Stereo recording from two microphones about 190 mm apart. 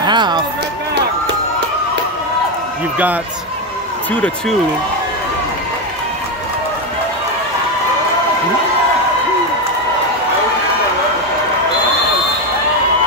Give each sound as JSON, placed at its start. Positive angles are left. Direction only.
{"t": 0.0, "sound": "run", "side_deg": -25}
{"t": 4.1, "sound": "speech", "side_deg": 5}